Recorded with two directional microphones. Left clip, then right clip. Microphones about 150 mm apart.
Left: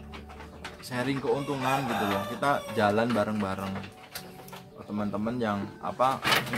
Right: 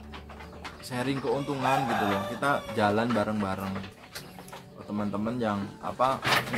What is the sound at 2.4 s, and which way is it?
Speech, 15° left (ahead or behind).